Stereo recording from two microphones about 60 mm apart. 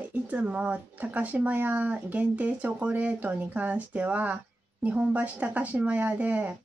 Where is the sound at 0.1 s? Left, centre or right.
Right.